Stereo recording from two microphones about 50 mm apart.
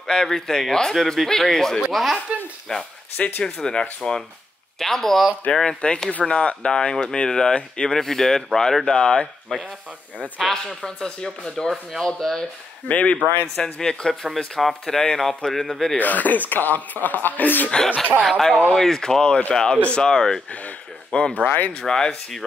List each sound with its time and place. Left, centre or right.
0.0 s speech: centre
2.7 s speech: centre
12.8 s speech: left; by 16.0 s centre
16.0 s speech: left
17.6 s speech: centre
18.2 s speech: centre
21.1 s speech: left